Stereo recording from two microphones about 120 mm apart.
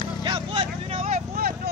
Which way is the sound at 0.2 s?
45° right (ahead or behind).